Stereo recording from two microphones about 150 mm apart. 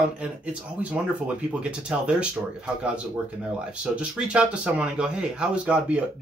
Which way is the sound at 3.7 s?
5° right (ahead or behind).